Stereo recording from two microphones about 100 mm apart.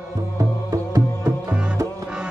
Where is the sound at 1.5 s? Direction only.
10° right (ahead or behind).